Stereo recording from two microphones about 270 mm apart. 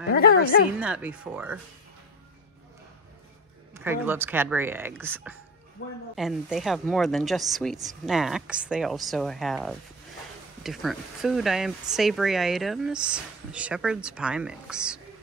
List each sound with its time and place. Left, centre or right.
0.1 s a woman's voice: left
0.7 s speech: centre
3.7 s speech: centre